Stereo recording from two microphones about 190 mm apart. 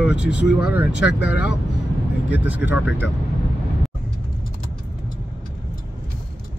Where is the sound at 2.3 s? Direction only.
10° right (ahead or behind).